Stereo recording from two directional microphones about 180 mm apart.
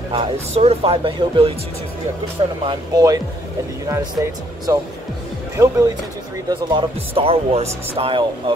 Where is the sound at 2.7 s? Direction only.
20° right (ahead or behind).